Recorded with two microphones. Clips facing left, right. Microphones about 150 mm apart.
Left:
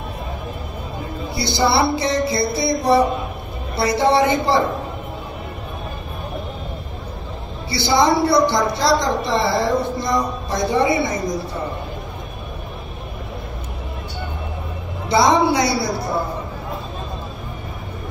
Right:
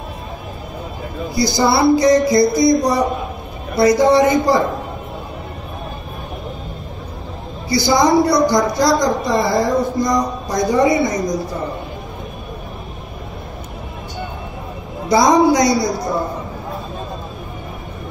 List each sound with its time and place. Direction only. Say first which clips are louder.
1.3 s a woman's voice: right 3 dB; 25° left (ahead or behind)
7.7 s a woman's voice: right 3 dB; 25° left (ahead or behind)
15.0 s a woman's voice: right 3 dB; 30° left (ahead or behind)